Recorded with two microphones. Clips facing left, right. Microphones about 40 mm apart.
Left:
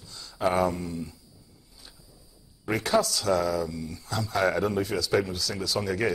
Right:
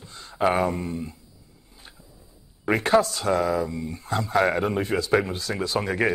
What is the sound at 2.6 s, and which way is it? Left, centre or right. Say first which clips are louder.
Speech: right 5 dB; right.